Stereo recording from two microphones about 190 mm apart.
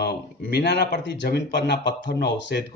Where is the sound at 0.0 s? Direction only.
60° left (ahead or behind).